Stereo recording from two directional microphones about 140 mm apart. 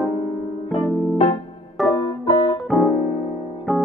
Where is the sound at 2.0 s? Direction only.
40° left (ahead or behind).